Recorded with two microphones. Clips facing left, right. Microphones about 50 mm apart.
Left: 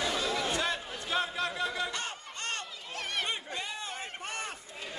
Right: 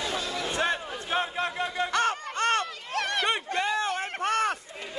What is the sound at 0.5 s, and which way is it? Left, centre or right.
Crowd, right.